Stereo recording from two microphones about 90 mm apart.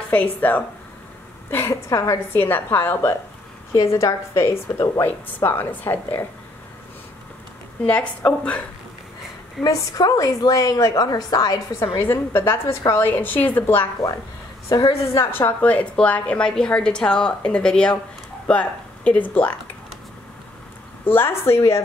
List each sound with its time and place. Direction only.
0.4 s a woman's voice: 20° left (ahead or behind)
2.3 s a woman's voice: 25° left (ahead or behind)
3.7 s a woman's voice: 35° left (ahead or behind)
7.8 s a woman's voice: 15° left (ahead or behind)
9.6 s a woman's voice: 40° left (ahead or behind)
12.3 s a woman's voice: 25° left (ahead or behind)
14.7 s a woman's voice: 40° left (ahead or behind)
15.3 s a woman's voice: 20° left (ahead or behind)
21.0 s a woman's voice: 25° left (ahead or behind)